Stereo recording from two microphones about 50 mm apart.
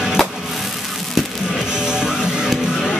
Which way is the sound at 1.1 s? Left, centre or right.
Centre.